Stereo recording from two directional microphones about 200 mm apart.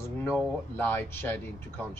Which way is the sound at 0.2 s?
10° left (ahead or behind).